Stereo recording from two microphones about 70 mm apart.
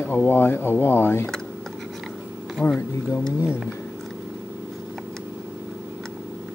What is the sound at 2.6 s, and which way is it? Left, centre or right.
Speech, centre.